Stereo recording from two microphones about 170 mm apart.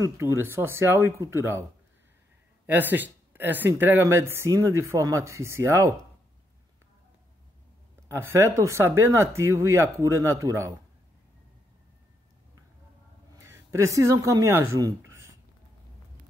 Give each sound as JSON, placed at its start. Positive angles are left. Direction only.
{"t": 0.0, "sound": "speech", "side_deg": -15}
{"t": 2.6, "sound": "speech", "side_deg": -10}
{"t": 8.1, "sound": "speech", "side_deg": -15}
{"t": 13.4, "sound": "speech", "side_deg": -15}